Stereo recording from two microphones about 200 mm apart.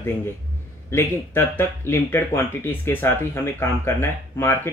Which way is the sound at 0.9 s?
10° left (ahead or behind).